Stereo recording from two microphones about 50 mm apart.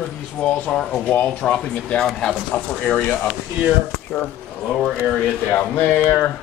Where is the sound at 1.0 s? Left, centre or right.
Left.